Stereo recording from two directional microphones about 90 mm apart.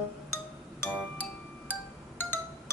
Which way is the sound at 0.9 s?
20° left (ahead or behind).